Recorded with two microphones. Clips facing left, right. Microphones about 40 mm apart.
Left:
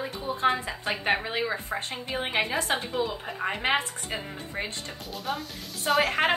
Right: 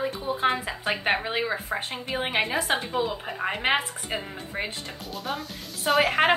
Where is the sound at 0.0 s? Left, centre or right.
Centre.